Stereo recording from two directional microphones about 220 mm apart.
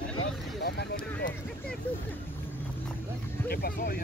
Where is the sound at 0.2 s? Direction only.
50° left (ahead or behind).